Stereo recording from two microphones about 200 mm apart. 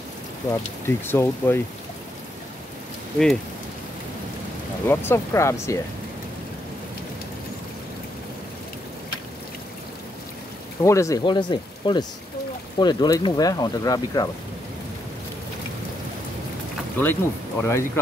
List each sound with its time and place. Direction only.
0.5 s speech: 10° left (ahead or behind)
4.8 s speech: 10° left (ahead or behind)
10.8 s speech: 15° left (ahead or behind)
17.0 s speech: 10° left (ahead or behind)